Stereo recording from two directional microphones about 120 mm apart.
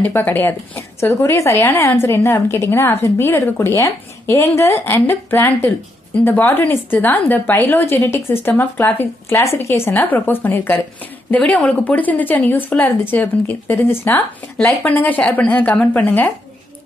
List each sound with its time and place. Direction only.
0.0 s a woman's voice: 15° left (ahead or behind)